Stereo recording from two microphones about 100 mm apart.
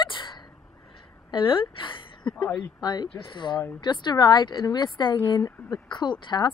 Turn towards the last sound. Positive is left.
turn(degrees=50)  # may be behind; listen again after turning